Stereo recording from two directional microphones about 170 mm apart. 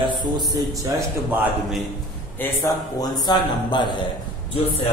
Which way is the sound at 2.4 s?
15° left (ahead or behind).